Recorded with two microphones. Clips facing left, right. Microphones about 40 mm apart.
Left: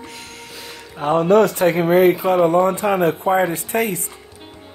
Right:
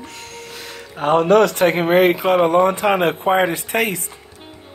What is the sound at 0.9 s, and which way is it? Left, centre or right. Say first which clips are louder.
Speech: right 1 dB; right.